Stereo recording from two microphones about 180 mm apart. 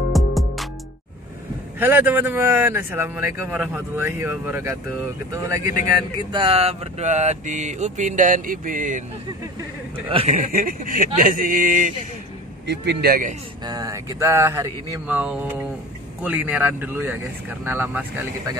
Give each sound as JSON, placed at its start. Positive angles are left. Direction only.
{"t": 0.1, "sound": "music", "side_deg": 0}
{"t": 1.8, "sound": "speech", "side_deg": -10}
{"t": 5.9, "sound": "mantra", "side_deg": -25}
{"t": 10.0, "sound": "mantra", "side_deg": -30}
{"t": 10.3, "sound": "a man's voice", "side_deg": -50}
{"t": 12.6, "sound": "a man's voice", "side_deg": -70}
{"t": 13.7, "sound": "speech", "side_deg": -20}